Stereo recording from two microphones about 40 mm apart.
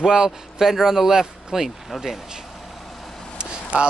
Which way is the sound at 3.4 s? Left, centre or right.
Right.